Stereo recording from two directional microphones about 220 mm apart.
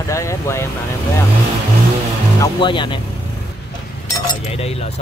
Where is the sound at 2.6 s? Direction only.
20° left (ahead or behind).